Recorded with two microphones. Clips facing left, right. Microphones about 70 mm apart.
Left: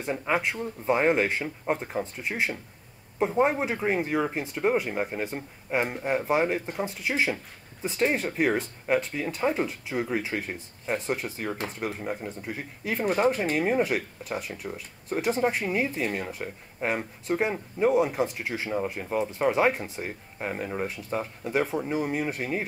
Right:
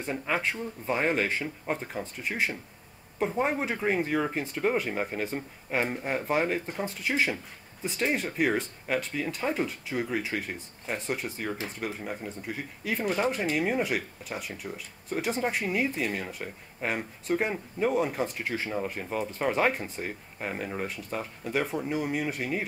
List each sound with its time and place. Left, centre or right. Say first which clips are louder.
0.2 s speech: left 3 dB; centre
11.8 s speech: left 3 dB; centre
13.0 s speech: left 4 dB; left